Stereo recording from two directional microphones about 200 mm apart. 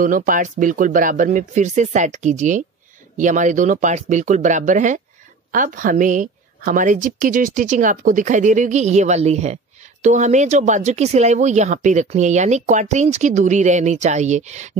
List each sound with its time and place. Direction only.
0.0 s speech: 45° right (ahead or behind)